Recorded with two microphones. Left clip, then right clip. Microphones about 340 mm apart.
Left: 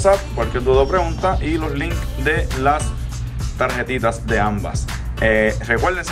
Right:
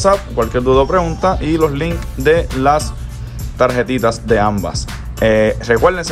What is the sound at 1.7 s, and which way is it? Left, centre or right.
Speech, centre.